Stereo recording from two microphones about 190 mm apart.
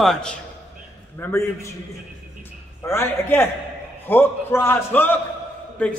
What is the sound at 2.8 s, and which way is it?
A man's voice, 15° left (ahead or behind).